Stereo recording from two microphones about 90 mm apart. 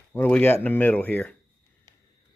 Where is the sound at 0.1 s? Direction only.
20° left (ahead or behind).